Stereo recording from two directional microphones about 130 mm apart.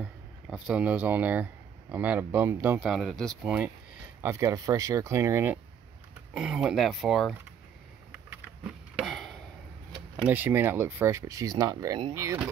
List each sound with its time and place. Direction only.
0.0 s speech: 5° right (ahead or behind)
2.8 s speech: centre (ahead or behind)
3.4 s speech: 15° right (ahead or behind)
6.3 s speech: 5° right (ahead or behind)
9.0 s chop: centre (ahead or behind)
10.2 s speech: 15° right (ahead or behind)